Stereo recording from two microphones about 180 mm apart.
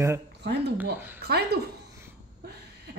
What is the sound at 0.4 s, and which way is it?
A woman's voice, 65° right (ahead or behind).